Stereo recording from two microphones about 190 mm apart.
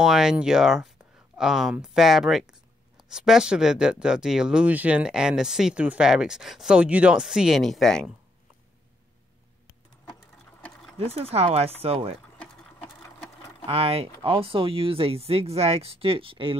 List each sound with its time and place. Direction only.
0.0 s speech: 5° right (ahead or behind)
11.1 s speech: 30° right (ahead or behind)
13.7 s speech: 30° right (ahead or behind)